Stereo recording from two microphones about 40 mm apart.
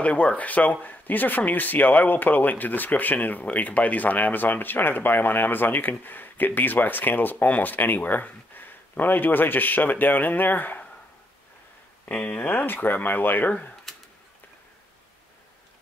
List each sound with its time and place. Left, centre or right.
0.0 s speech: left
12.1 s speech: left
13.9 s a sound: centre